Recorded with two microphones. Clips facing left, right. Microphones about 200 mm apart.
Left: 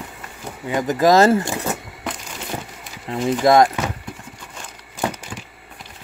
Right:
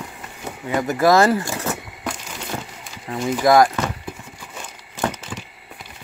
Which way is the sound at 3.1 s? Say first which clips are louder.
Left 1 dB; 25° left (ahead or behind).